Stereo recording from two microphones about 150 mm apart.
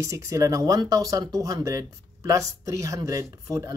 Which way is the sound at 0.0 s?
20° right (ahead or behind).